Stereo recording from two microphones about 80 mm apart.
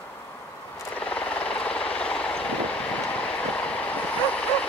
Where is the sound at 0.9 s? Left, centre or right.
Centre.